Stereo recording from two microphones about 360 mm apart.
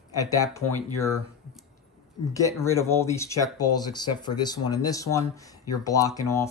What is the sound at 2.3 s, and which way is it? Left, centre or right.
Speech, centre.